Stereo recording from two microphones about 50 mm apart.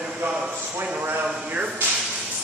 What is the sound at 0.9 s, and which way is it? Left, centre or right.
Speech, right.